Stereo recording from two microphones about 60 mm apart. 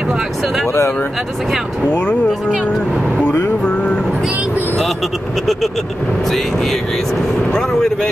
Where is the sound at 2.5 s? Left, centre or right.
Centre.